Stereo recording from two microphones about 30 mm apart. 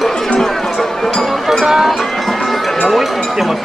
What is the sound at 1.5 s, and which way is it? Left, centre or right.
Music, centre.